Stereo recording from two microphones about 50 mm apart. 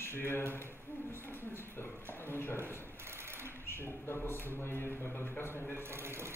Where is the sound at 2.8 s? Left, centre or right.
Right.